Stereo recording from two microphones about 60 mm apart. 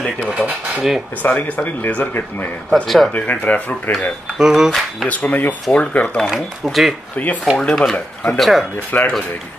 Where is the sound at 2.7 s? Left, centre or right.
Centre.